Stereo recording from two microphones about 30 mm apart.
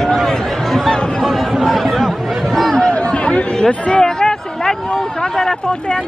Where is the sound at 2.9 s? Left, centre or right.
Left.